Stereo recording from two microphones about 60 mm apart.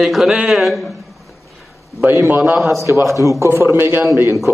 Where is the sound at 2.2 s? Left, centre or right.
Right.